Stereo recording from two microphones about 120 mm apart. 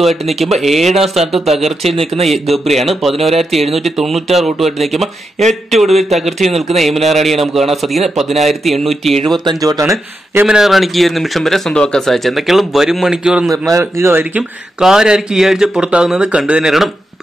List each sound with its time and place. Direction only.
0.0 s speech: centre (ahead or behind)
9.4 s speech: 35° right (ahead or behind)
10.4 s speech: 5° right (ahead or behind)
13.7 s speech: 25° right (ahead or behind)
14.8 s speech: 5° right (ahead or behind)